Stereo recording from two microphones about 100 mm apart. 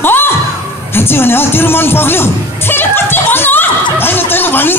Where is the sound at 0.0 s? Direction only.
20° left (ahead or behind).